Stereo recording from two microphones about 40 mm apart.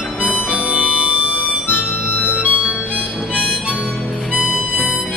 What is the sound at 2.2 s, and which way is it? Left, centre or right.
Music, right.